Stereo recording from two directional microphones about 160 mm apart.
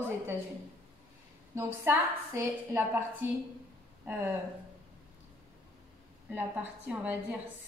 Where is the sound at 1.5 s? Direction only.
15° right (ahead or behind).